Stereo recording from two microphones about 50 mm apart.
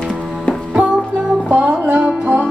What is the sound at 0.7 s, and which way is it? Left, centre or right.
Music, centre.